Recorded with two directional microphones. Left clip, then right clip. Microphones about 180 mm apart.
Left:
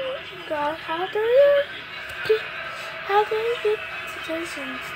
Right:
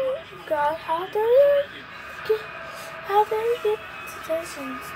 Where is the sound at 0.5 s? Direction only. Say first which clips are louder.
Right 3 dB; 10° left (ahead or behind).